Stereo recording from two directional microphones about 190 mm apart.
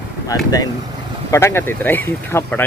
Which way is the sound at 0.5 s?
20° left (ahead or behind).